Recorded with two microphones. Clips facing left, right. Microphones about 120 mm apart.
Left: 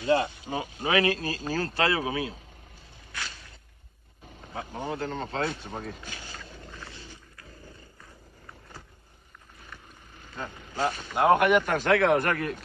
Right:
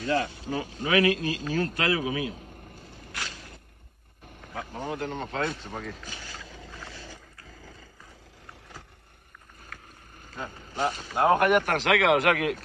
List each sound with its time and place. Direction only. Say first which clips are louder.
0.0 s speech: left 3 dB; 25° left (ahead or behind)
0.8 s a man's voice: right 2 dB; 30° left (ahead or behind)
4.5 s speech: even; 20° left (ahead or behind)
4.9 s a man's voice: even; 35° left (ahead or behind)
5.6 s speech: even; 15° left (ahead or behind)
10.5 s vehicle: even; 30° right (ahead or behind)
11.2 s speech: left 1 dB; 40° right (ahead or behind)
11.7 s speech: even; 90° right